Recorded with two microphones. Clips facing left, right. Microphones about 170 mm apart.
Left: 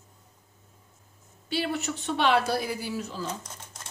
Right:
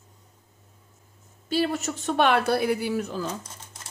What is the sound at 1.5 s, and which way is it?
A woman's voice, 40° right (ahead or behind).